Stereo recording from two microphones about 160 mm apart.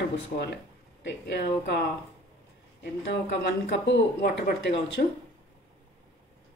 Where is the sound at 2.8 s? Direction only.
90° left.